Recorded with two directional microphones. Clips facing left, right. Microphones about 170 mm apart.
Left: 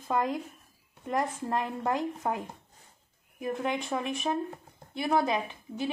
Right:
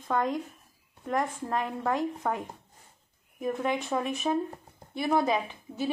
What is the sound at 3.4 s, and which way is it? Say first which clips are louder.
A woman's voice: right 2 dB; centre (ahead or behind).